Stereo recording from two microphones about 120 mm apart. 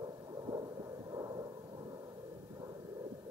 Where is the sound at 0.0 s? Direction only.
30° right (ahead or behind).